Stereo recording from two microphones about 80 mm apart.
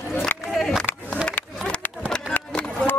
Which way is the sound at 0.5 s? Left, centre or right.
Centre.